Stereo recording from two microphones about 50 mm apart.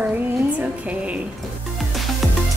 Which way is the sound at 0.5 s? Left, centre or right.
Right.